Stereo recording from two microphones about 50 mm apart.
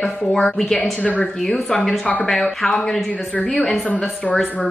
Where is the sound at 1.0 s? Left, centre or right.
Left.